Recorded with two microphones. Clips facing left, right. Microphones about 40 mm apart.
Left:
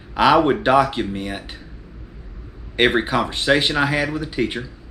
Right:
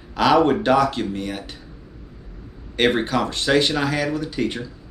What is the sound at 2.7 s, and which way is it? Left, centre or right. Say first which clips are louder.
Speech: left 2 dB; centre.